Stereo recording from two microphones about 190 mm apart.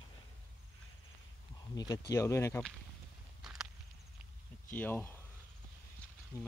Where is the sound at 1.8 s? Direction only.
20° left (ahead or behind).